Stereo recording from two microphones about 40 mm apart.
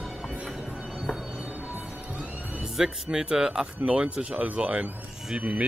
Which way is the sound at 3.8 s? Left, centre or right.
Right.